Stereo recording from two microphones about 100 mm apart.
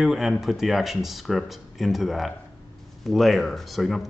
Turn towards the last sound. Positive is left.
turn(degrees=0)  # may be behind; listen again after turning